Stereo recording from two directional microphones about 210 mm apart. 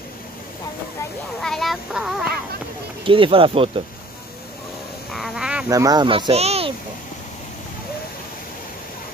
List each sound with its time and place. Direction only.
1.4 s speech: centre (ahead or behind)
3.1 s speech: 25° right (ahead or behind)
5.1 s a sound: centre (ahead or behind)
5.7 s speech: 15° right (ahead or behind)